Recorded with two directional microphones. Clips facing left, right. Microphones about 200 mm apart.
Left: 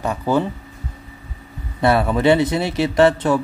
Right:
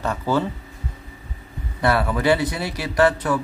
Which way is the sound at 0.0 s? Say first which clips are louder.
Left 3 dB; 15° left (ahead or behind).